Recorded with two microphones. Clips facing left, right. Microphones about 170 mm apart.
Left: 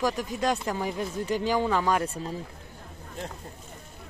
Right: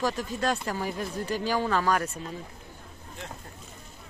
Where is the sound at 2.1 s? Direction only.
30° left (ahead or behind).